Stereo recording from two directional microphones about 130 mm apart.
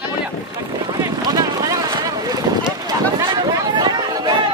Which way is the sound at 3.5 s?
35° right (ahead or behind).